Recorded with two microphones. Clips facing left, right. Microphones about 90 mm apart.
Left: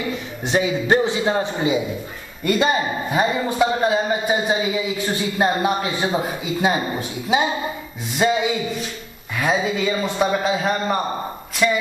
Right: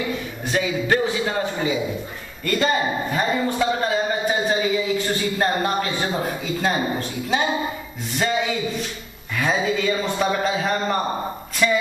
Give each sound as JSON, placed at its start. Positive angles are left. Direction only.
{"t": 0.5, "sound": "a man's voice", "side_deg": 25}
{"t": 8.2, "sound": "a sound", "side_deg": 10}
{"t": 9.4, "sound": "a man's voice", "side_deg": 5}